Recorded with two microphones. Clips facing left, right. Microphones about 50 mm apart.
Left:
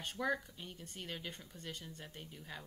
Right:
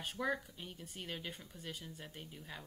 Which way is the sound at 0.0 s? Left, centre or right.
Centre.